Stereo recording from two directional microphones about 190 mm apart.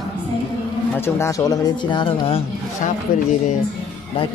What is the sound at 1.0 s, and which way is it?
Speech, 15° left (ahead or behind).